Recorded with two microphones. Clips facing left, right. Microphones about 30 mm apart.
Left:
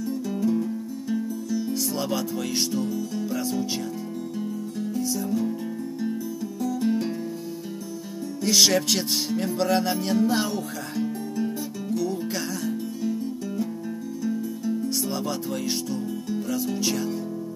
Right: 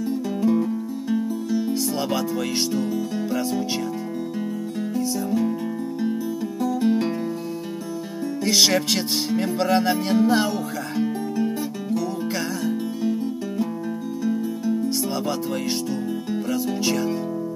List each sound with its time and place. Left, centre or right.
0.1 s music: right
2.1 s music: centre
4.9 s music: centre
6.6 s music: right
8.5 s music: centre
11.0 s music: right
13.0 s music: right
16.5 s music: centre